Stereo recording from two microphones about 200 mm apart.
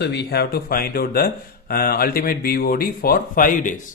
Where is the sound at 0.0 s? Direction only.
55° left (ahead or behind).